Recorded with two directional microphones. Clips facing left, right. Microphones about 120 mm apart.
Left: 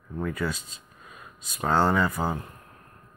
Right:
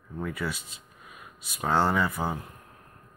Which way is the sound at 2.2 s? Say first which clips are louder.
Left 2 dB; 25° left (ahead or behind).